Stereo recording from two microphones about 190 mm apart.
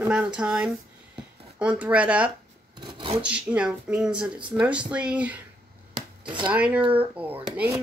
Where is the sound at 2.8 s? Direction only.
25° right (ahead or behind).